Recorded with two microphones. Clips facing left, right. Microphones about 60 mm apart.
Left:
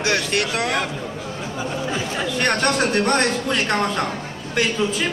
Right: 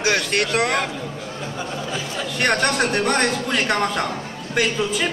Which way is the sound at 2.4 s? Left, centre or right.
Centre.